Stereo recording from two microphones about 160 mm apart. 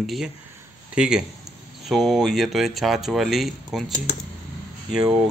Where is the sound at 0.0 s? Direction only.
Centre (ahead or behind).